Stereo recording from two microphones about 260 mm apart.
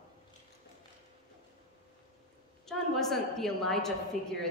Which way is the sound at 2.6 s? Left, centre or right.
Centre.